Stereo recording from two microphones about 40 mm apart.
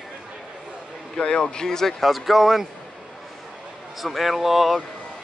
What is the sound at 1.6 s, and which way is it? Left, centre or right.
Speech, centre.